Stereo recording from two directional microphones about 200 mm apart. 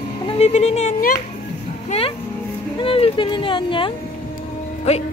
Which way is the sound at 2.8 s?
25° left (ahead or behind).